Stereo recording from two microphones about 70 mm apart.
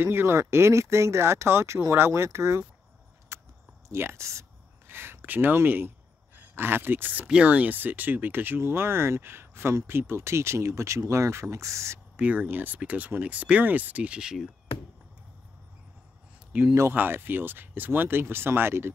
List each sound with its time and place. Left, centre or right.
0.0 s speech: right
3.3 s a sound: right
4.9 s speech: right
7.2 s speech: centre; by 12.0 s right
12.2 s speech: right
16.6 s speech: right
16.9 s speech: right